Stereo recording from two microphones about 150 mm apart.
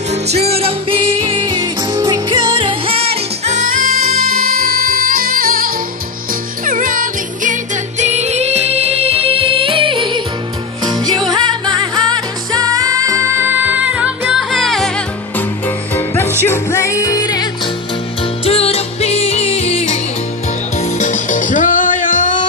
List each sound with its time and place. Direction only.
0.1 s music: 45° right (ahead or behind); by 14.1 s 10° right (ahead or behind)
14.2 s music: centre (ahead or behind); by 17.5 s 25° left (ahead or behind)
18.2 s music: 40° left (ahead or behind); by 22.5 s 60° left (ahead or behind)